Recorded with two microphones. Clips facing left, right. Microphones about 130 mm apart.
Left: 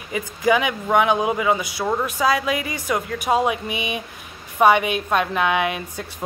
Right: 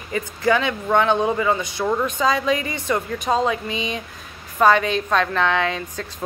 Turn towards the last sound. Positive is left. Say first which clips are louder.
# even
turn(degrees=15)  # may be behind; listen again after turning